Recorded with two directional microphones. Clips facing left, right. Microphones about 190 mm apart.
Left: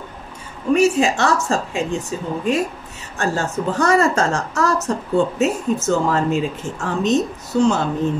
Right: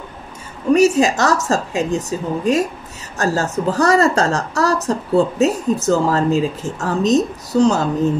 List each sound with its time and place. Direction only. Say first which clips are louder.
0.7 s a woman's voice: right 2 dB; 40° right (ahead or behind)